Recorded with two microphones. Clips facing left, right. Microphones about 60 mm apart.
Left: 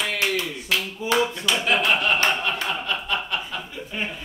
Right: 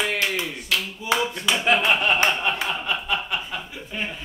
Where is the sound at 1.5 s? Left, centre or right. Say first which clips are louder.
Right 3 dB; right.